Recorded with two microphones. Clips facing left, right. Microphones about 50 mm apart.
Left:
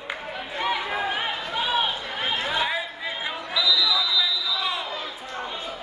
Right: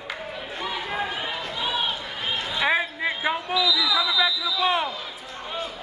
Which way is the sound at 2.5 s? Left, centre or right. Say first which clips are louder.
Right 3 dB; right.